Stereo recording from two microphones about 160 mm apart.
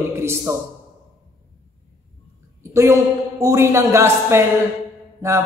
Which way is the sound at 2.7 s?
15° right (ahead or behind).